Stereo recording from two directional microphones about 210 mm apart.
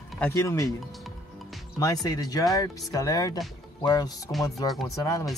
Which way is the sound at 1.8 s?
15° left (ahead or behind).